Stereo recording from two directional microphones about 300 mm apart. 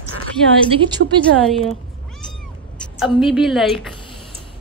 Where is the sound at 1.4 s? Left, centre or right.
Centre.